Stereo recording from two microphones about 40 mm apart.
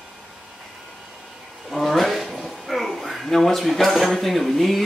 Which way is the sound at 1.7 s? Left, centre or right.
Centre.